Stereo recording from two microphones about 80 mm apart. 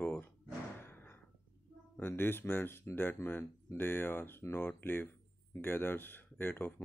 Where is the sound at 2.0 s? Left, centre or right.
Left.